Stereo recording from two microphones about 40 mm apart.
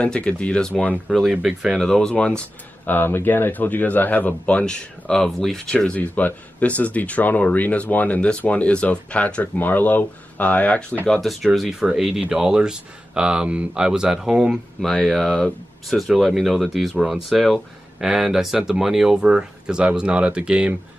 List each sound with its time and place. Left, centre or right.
0.0 s speech: left
0.6 s speech: centre
1.0 s speech: centre
2.0 s speech: left
2.9 s speech: left
4.6 s speech: left
5.1 s speech: centre
5.9 s speech: left
9.4 s speech: left
11.1 s speech: centre
14.8 s speech: centre
15.9 s speech: centre
19.1 s speech: right